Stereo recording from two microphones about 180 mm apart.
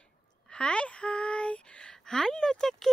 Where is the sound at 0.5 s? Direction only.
5° left (ahead or behind).